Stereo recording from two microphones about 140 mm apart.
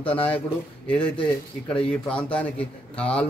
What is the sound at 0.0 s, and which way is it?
Speech, 45° left (ahead or behind).